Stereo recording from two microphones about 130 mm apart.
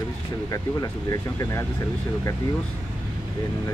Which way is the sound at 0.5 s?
25° left (ahead or behind).